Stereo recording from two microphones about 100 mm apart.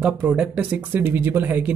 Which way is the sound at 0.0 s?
15° right (ahead or behind).